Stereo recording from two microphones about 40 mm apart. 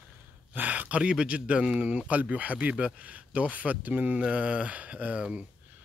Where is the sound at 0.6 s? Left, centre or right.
Right.